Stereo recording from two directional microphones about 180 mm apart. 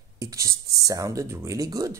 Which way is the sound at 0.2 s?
15° right (ahead or behind).